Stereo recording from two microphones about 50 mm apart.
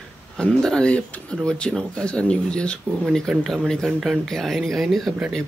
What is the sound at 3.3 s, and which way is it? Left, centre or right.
Speech, centre.